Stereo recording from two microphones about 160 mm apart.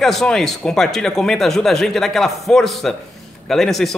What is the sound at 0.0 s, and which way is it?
A man's voice, centre (ahead or behind).